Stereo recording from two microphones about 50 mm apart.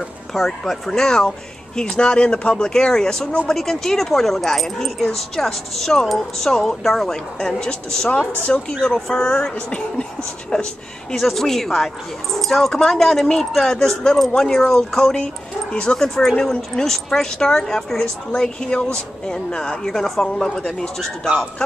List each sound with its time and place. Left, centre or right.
0.3 s a woman's voice: centre
8.8 s speech: centre
11.1 s speech: centre